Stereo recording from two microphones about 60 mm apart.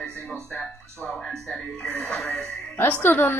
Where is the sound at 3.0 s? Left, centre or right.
Left.